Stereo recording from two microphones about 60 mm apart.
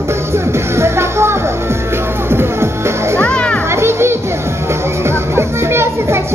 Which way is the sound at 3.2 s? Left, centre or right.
Centre.